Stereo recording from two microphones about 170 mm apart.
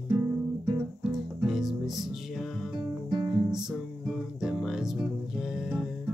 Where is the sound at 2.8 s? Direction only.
25° right (ahead or behind).